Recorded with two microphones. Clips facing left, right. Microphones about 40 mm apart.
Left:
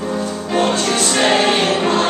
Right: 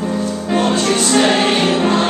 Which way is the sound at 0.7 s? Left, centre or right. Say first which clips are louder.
Right 2 dB; centre.